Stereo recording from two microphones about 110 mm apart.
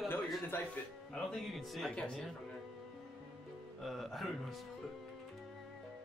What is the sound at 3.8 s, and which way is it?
Speech, centre (ahead or behind).